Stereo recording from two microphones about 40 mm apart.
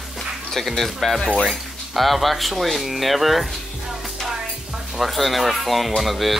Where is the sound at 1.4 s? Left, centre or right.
Centre.